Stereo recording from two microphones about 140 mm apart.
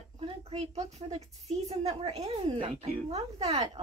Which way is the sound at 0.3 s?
45° right (ahead or behind).